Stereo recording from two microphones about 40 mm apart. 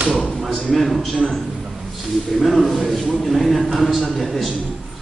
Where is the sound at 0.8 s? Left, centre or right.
Centre.